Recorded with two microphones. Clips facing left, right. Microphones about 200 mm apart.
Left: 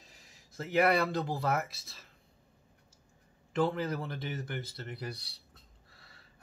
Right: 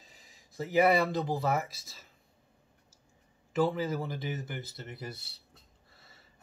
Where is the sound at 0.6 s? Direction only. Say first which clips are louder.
Right 2 dB; centre (ahead or behind).